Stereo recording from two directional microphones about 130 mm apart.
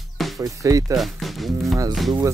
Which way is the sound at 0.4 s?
25° right (ahead or behind).